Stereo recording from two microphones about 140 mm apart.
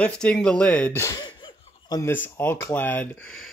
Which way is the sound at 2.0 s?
15° left (ahead or behind).